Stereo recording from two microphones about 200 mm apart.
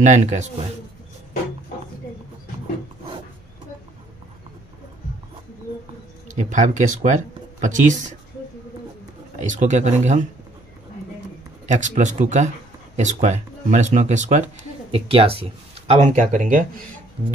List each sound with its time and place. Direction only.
0.0 s speech: 35° right (ahead or behind)
6.3 s speech: 40° right (ahead or behind)
9.4 s speech: 40° right (ahead or behind)
11.6 s speech: 35° right (ahead or behind)
15.9 s speech: 40° right (ahead or behind)